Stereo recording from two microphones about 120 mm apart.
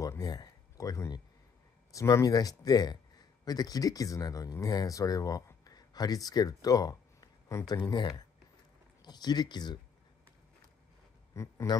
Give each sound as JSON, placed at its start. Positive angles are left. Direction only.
{"t": 0.0, "sound": "a sound", "side_deg": 30}
{"t": 1.9, "sound": "speech", "side_deg": 30}
{"t": 11.3, "sound": "speech", "side_deg": 25}